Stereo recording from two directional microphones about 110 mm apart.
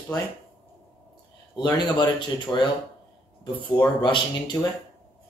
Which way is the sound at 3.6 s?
45° left (ahead or behind).